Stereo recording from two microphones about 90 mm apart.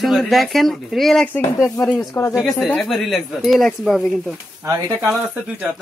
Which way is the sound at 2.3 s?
5° right (ahead or behind).